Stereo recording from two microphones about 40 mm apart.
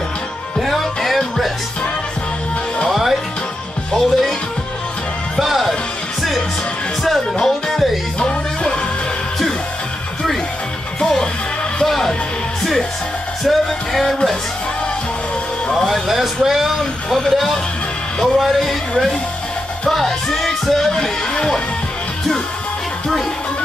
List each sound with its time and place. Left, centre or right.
0.6 s music: centre
2.9 s music: centre
5.4 s music: centre
7.3 s music: centre
7.7 s music: centre
8.2 s music: left
11.0 s music: centre
13.4 s music: centre
15.7 s music: centre
16.4 s speech: centre
17.1 s speech: centre